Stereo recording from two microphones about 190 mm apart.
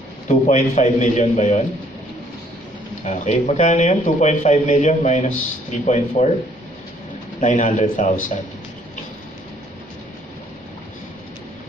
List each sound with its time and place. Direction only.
0.3 s speech: 40° left (ahead or behind)
3.0 s speech: 40° left (ahead or behind)
7.3 s speech: 40° left (ahead or behind)